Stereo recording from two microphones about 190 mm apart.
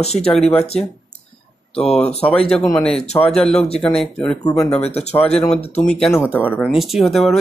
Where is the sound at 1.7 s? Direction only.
5° left (ahead or behind).